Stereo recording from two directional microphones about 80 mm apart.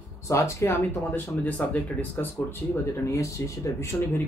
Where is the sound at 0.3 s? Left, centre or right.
Left.